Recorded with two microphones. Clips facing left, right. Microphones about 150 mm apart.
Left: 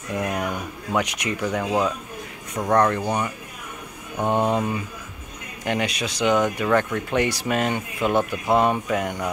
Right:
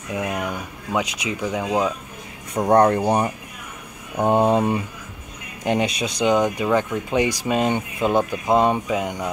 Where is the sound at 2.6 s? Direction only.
30° right (ahead or behind).